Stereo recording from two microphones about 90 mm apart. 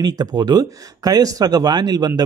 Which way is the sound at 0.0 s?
50° right (ahead or behind).